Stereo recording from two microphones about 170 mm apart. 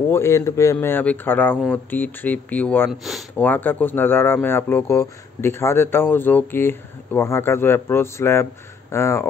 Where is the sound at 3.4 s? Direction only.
10° left (ahead or behind).